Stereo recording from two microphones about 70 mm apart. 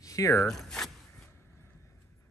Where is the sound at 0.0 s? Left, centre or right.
Left.